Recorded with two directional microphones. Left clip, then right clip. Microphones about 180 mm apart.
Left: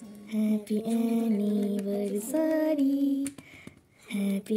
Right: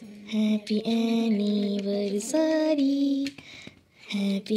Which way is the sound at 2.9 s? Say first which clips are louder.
Right 2 dB; 35° left (ahead or behind).